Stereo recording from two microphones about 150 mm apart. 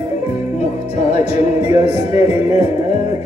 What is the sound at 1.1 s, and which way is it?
Music, 45° left (ahead or behind).